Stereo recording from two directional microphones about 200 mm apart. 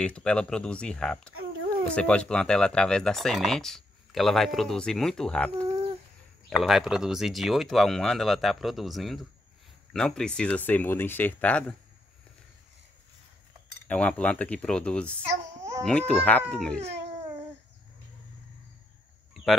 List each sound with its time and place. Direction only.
0.0 s speech: 5° left (ahead or behind)
13.8 s speech: 5° left (ahead or behind)
15.5 s babbling: 15° right (ahead or behind)
15.8 s speech: 5° left (ahead or behind)